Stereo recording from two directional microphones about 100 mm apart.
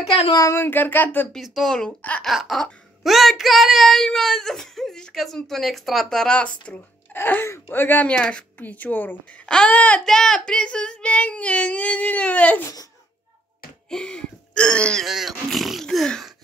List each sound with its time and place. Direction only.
0.3 s speech: 30° left (ahead or behind)
1.3 s child singing: centre (ahead or behind)
2.2 s child singing: centre (ahead or behind); by 8.1 s 20° left (ahead or behind)
8.1 s speech: 10° left (ahead or behind)
13.8 s a sound: 5° left (ahead or behind)
15.0 s child singing: 5° right (ahead or behind)